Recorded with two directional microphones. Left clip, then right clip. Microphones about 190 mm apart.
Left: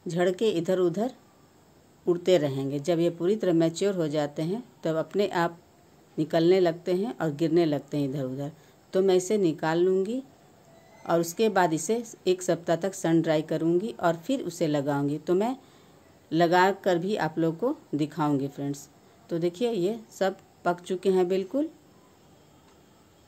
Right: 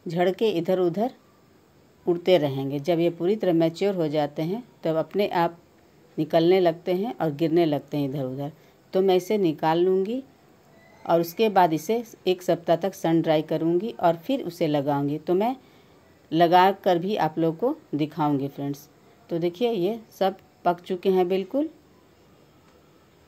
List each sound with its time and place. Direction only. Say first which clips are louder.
0.1 s a woman's voice: right 2 dB; centre (ahead or behind)